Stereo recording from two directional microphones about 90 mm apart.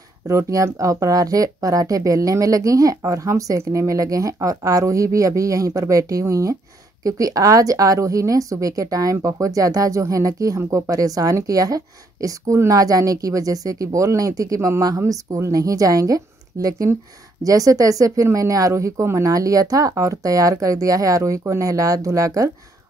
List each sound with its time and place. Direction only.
0.3 s a woman's voice: 35° right (ahead or behind)